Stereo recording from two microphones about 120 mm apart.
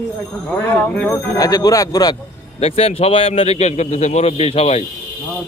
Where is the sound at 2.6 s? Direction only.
55° left (ahead or behind).